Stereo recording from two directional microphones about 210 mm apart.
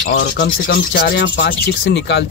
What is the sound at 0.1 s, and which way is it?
Rub, 50° left (ahead or behind).